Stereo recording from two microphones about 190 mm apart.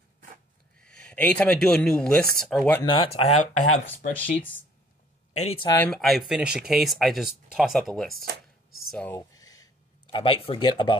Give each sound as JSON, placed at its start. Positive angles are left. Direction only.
{"t": 0.7, "sound": "speech", "side_deg": 5}
{"t": 2.8, "sound": "speech", "side_deg": 25}
{"t": 3.2, "sound": "speech", "side_deg": 35}
{"t": 5.4, "sound": "speech", "side_deg": 30}
{"t": 5.7, "sound": "speech", "side_deg": 5}
{"t": 9.3, "sound": "a sound", "side_deg": 20}
{"t": 10.1, "sound": "speech", "side_deg": 30}